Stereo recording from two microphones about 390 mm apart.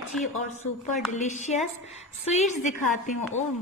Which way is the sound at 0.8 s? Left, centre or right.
Centre.